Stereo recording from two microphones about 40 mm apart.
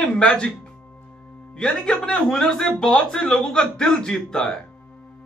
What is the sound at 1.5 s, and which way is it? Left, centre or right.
A man's voice, left.